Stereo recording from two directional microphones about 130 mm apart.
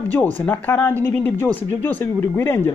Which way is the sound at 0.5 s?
15° left (ahead or behind).